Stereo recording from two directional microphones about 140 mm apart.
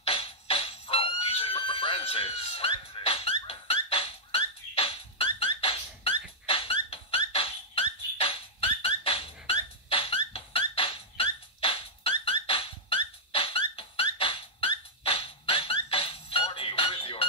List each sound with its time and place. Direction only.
0.0 s music: 45° left (ahead or behind)